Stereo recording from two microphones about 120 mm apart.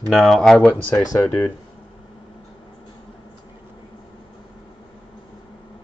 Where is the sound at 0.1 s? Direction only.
5° left (ahead or behind).